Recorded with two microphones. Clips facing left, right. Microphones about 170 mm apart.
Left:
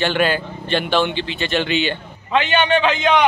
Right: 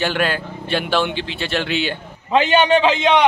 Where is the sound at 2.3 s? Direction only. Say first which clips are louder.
Right 3 dB; 35° right (ahead or behind).